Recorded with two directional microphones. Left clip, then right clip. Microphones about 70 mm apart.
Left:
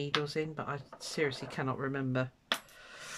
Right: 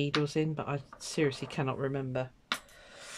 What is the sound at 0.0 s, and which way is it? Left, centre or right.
Speech, right.